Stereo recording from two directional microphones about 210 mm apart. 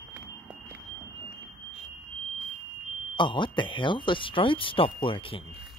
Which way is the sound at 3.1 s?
25° left (ahead or behind).